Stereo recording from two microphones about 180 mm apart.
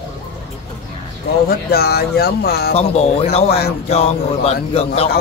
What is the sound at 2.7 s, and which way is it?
Speech, 35° left (ahead or behind).